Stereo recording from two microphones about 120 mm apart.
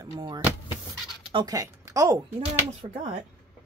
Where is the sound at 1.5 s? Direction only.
30° right (ahead or behind).